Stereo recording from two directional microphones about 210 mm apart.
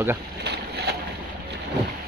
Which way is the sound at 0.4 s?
50° right (ahead or behind).